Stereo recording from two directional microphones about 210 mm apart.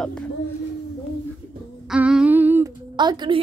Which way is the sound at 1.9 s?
5° right (ahead or behind).